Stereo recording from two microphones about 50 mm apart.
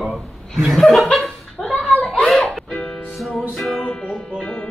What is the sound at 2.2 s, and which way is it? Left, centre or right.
Music, centre.